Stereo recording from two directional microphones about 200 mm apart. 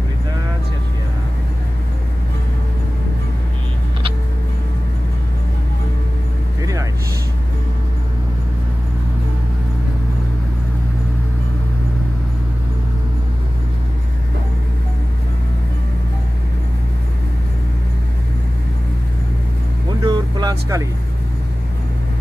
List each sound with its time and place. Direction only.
6.6 s vehicle: 15° right (ahead or behind)
20.0 s vehicle: 20° right (ahead or behind)